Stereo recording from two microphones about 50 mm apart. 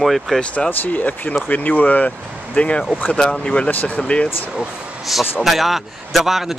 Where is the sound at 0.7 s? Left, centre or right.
Left.